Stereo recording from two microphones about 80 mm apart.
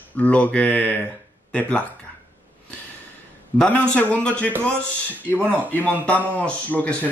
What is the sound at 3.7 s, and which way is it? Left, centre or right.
A man's voice, centre.